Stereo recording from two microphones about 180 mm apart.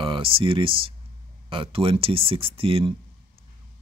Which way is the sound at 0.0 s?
30° right (ahead or behind).